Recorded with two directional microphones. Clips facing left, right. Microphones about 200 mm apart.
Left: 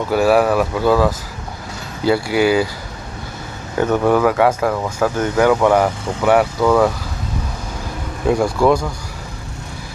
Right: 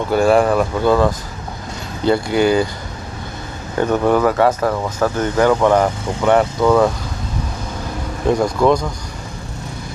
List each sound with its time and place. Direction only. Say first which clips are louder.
0.1 s speech: even; 5° left (ahead or behind)
3.8 s speech: even; 5° left (ahead or behind)
8.3 s speech: even; 5° left (ahead or behind)